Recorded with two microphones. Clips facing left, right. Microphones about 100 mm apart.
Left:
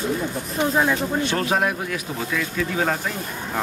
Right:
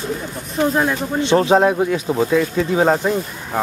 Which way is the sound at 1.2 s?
25° right (ahead or behind).